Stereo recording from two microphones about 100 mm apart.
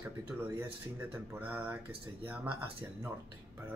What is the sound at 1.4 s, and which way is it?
Speech, 20° right (ahead or behind).